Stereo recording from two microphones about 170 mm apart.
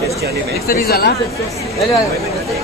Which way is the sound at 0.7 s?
65° left (ahead or behind).